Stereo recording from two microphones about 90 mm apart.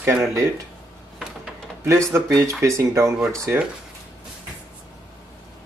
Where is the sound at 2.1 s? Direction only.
25° right (ahead or behind).